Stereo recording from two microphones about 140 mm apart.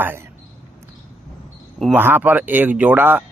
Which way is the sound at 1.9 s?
15° right (ahead or behind).